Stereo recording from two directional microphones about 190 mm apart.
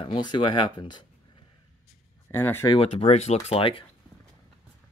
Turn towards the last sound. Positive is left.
turn(degrees=30)  # may be behind; listen again after turning